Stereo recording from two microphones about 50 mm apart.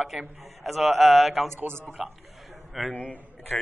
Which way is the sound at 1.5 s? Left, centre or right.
Right.